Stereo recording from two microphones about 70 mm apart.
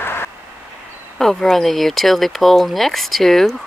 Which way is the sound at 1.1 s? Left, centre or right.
Centre.